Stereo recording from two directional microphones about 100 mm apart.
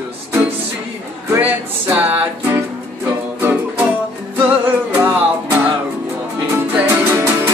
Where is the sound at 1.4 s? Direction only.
15° right (ahead or behind).